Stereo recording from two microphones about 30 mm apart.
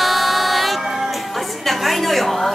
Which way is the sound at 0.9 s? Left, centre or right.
Centre.